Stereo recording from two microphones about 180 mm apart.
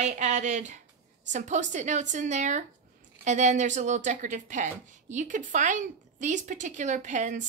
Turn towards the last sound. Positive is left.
turn(degrees=-45)  # may be behind; listen again after turning